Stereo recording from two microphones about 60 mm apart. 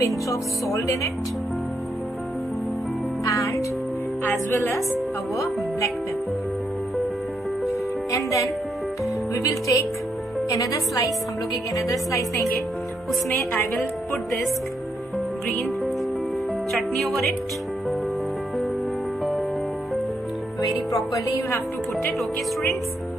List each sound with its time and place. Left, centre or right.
0.0 s speech: left
3.3 s music: left
8.1 s a woman's voice: left
14.1 s speech: centre
16.7 s speech: centre
20.9 s speech: left